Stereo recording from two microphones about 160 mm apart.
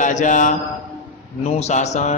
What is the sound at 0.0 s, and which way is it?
A man's voice, 50° left (ahead or behind).